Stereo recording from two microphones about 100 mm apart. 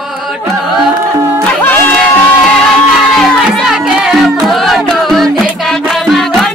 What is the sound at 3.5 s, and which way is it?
Music, 5° right (ahead or behind).